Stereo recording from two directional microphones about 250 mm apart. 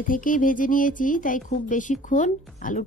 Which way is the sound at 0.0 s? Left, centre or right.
Left.